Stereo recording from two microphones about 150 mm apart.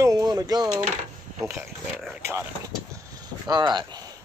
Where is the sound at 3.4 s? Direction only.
30° right (ahead or behind).